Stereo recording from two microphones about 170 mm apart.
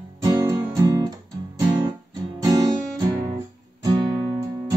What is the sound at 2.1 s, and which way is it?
Guitar, 20° right (ahead or behind).